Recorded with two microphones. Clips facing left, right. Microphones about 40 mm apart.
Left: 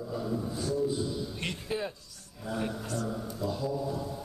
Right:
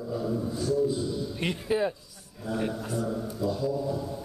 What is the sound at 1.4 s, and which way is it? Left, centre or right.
A man's voice, centre.